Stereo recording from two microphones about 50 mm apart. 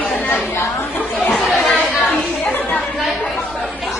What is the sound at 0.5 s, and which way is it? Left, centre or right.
Chatter, left.